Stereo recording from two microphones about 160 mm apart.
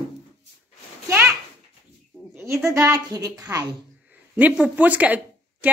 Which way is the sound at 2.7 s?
20° right (ahead or behind).